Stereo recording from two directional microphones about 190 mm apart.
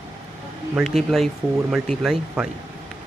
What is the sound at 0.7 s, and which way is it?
Speech, centre (ahead or behind).